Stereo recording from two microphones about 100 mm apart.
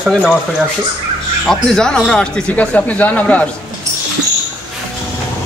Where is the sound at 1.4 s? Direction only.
5° left (ahead or behind).